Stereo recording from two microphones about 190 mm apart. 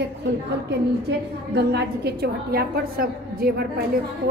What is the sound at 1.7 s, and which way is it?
A woman's voice, 60° right (ahead or behind).